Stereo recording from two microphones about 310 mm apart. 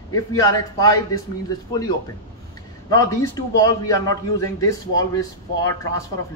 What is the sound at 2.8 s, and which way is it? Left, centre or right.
A man's voice, centre.